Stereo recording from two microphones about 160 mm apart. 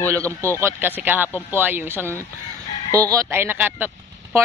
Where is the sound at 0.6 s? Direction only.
10° right (ahead or behind).